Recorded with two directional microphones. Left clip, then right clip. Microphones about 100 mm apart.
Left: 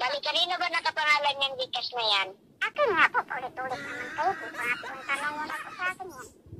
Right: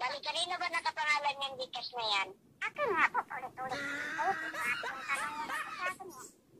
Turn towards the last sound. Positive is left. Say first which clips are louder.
# left 4 dB
turn(degrees=0)  # may be behind; listen again after turning